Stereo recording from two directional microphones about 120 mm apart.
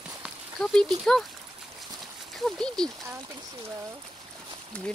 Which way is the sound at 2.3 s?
5° left (ahead or behind).